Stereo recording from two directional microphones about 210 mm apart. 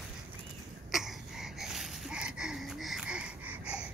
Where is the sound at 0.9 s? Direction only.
Centre (ahead or behind).